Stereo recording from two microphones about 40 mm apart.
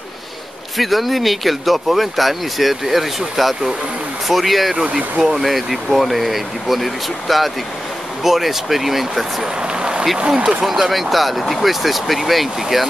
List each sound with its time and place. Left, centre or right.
0.7 s speech: centre
4.8 s speech: right
5.2 s speech: centre
9.6 s a sound: right
10.1 s speech: centre
10.6 s speech: centre